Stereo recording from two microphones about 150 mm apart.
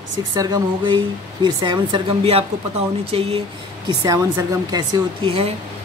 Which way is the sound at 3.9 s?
25° right (ahead or behind).